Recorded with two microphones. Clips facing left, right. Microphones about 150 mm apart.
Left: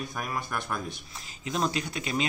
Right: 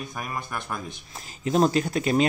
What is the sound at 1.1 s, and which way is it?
Speech, 40° right (ahead or behind).